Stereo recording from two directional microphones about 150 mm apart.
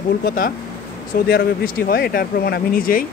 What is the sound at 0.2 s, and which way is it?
Speech, 80° left.